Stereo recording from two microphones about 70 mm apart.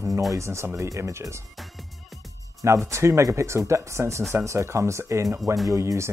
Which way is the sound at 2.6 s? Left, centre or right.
Right.